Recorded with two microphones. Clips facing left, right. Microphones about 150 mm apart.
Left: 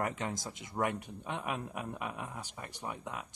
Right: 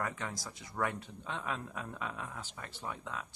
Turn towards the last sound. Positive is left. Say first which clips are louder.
# left 1 dB
turn(degrees=15)  # may be behind; listen again after turning